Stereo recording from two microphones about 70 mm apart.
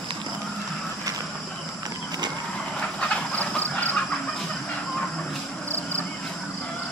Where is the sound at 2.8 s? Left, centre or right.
Centre.